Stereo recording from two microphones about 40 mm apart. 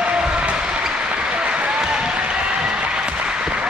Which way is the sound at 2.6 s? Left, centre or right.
Right.